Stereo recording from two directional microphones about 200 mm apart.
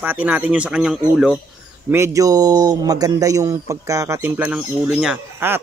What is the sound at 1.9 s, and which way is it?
A man's voice, 15° right (ahead or behind).